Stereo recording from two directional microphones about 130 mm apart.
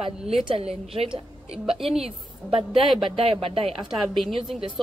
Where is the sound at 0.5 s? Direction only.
50° right (ahead or behind).